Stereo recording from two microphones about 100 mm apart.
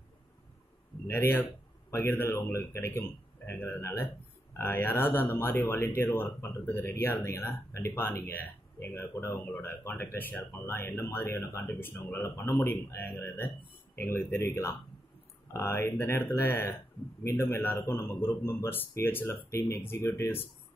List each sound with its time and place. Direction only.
1.0 s speech: 25° left (ahead or behind)